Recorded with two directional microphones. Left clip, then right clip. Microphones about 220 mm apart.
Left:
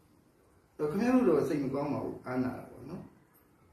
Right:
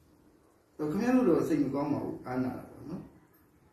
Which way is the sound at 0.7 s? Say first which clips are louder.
Even; 15° right (ahead or behind).